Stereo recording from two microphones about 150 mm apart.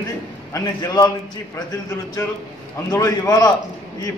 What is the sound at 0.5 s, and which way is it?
Speech, 25° left (ahead or behind).